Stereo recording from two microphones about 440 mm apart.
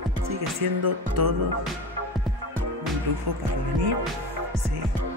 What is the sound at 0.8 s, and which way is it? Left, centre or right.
Speech, right.